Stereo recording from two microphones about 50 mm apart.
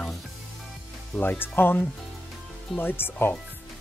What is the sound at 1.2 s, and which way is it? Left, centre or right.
Speech, left.